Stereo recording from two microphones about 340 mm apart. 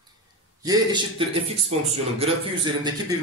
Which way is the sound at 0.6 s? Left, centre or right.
Centre.